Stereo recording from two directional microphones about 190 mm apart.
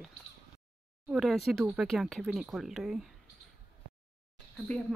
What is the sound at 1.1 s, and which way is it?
Speech, centre (ahead or behind).